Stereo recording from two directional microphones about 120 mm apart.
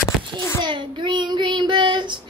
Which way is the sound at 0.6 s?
40° right (ahead or behind).